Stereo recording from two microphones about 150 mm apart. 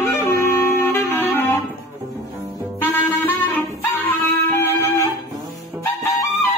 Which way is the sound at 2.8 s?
10° left (ahead or behind).